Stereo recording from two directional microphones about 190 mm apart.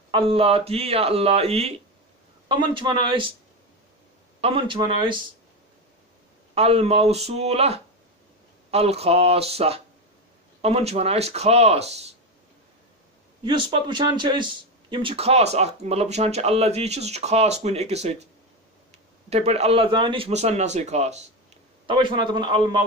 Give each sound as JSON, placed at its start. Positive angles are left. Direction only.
{"t": 0.1, "sound": "a man's voice", "side_deg": -30}
{"t": 4.4, "sound": "a man's voice", "side_deg": -30}
{"t": 6.5, "sound": "speech", "side_deg": -30}
{"t": 13.4, "sound": "speech", "side_deg": -25}
{"t": 19.2, "sound": "speech", "side_deg": -35}
{"t": 21.8, "sound": "a man's voice", "side_deg": -25}